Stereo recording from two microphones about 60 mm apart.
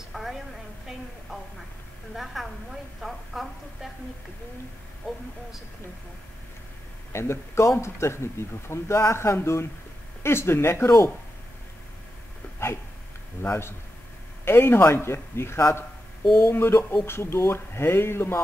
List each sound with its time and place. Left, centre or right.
0.1 s a sound: centre
2.1 s a woman's voice: centre
7.1 s speech: left
13.4 s speech: left